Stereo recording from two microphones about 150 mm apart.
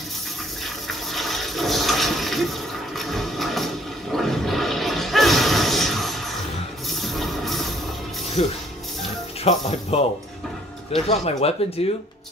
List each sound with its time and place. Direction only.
1.1 s toilet flush: centre (ahead or behind)
6.9 s music: centre (ahead or behind)
8.4 s speech: 45° left (ahead or behind)